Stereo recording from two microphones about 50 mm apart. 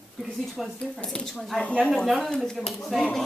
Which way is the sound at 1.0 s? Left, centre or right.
Centre.